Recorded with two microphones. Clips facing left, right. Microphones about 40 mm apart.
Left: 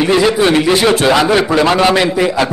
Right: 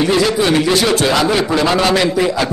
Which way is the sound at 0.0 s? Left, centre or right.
Left.